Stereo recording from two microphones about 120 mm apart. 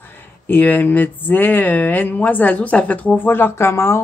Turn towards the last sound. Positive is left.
turn(degrees=25)  # may be behind; listen again after turning